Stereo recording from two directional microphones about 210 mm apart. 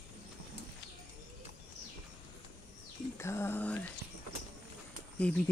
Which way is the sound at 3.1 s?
10° left (ahead or behind).